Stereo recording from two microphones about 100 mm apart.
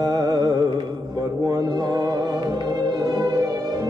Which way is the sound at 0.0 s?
40° right (ahead or behind).